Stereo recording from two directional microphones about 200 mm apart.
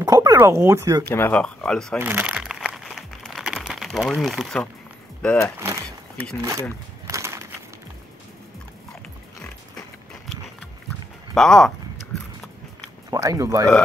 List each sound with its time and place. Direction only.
0.0 s speech: 15° right (ahead or behind)
1.0 s speech: 10° left (ahead or behind)
2.0 s crumpling: 10° right (ahead or behind)
5.2 s speech: 5° left (ahead or behind)
5.6 s crumpling: 15° right (ahead or behind)
7.1 s a sound: 15° right (ahead or behind)
11.3 s speech: centre (ahead or behind)
13.1 s speech: 15° right (ahead or behind)